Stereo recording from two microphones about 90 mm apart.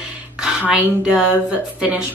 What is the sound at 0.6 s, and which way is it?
Speech, 10° right (ahead or behind).